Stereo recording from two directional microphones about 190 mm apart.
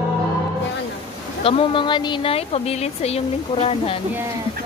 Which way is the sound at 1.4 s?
30° left (ahead or behind).